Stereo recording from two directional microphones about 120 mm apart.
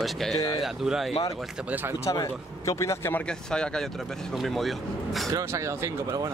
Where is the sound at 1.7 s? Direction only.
15° right (ahead or behind).